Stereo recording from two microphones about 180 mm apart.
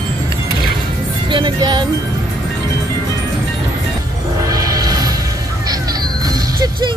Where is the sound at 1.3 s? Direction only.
25° right (ahead or behind).